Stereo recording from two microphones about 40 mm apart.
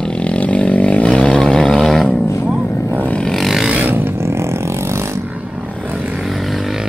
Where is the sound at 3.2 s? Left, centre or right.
Centre.